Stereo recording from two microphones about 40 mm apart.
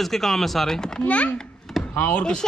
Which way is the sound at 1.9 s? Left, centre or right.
Left.